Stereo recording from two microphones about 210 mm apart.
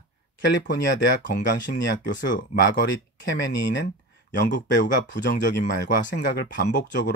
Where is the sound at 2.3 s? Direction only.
40° left (ahead or behind).